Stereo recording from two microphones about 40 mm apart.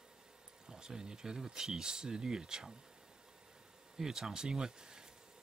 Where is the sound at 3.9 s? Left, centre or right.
Centre.